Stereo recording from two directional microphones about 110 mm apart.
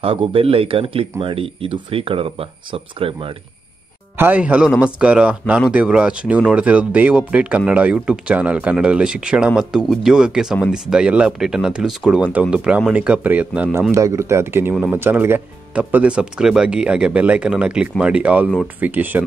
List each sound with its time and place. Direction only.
0.0 s speech: 55° right (ahead or behind)
4.2 s speech: 15° right (ahead or behind)
13.9 s speech: 30° right (ahead or behind)
14.7 s speech: 10° right (ahead or behind)
15.0 s speech: 20° right (ahead or behind)